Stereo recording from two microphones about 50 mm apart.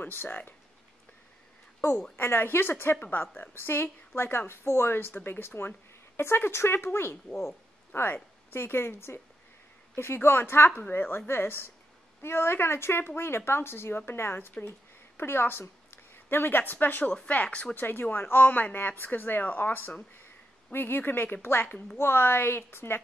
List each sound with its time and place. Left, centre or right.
0.0 s speech: left
2.1 s a woman's voice: left
10.7 s a woman's voice: left
17.3 s speech: left
17.7 s a woman's voice: left